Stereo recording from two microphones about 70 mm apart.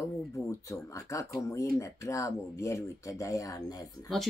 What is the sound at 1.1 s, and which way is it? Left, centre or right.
Speech, left.